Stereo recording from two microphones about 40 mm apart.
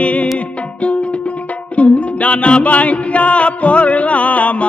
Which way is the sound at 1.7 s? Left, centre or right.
Left.